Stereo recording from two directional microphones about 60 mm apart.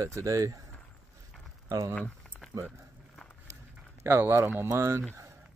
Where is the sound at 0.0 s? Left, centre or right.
Right.